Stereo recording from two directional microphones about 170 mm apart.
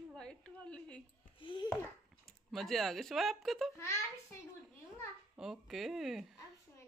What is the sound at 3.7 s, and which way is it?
Speech, 15° left (ahead or behind).